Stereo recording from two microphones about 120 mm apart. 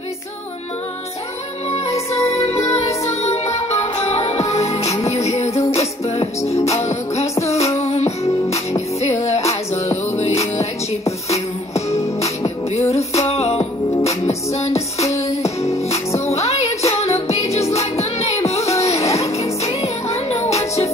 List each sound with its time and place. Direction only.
1.7 s music: 60° left (ahead or behind)
9.3 s music: 65° left (ahead or behind)
13.1 s music: 60° left (ahead or behind)
15.0 s music: 25° left (ahead or behind)
16.3 s music: 60° left (ahead or behind)